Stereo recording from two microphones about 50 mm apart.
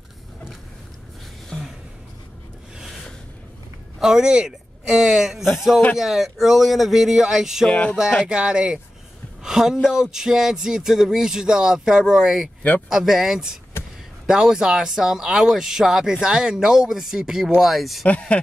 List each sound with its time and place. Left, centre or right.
4.0 s speech: centre
7.7 s speech: left
8.3 s speech: centre
18.3 s a sound: left